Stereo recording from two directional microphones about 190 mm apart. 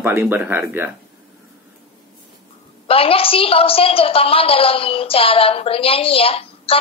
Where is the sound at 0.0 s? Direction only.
10° right (ahead or behind).